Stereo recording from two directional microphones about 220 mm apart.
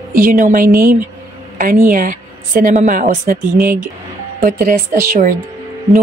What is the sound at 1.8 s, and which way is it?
A woman's voice, 35° right (ahead or behind).